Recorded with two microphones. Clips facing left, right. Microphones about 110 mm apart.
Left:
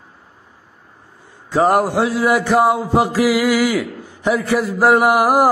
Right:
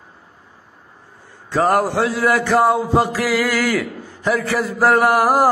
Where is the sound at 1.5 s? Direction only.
15° left (ahead or behind).